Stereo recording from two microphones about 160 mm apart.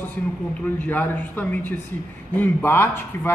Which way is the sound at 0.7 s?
10° left (ahead or behind).